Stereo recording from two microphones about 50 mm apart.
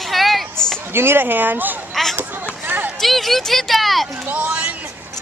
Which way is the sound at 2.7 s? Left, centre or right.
Right.